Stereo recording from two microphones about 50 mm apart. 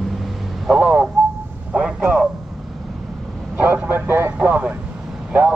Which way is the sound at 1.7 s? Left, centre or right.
Centre.